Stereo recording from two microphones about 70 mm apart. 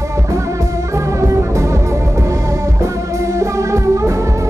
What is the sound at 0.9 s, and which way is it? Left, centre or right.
Music, right.